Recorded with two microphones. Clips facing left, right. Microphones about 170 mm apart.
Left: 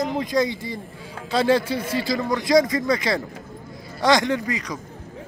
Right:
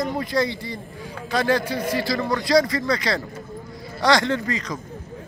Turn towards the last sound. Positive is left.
turn(degrees=15)  # may be behind; listen again after turning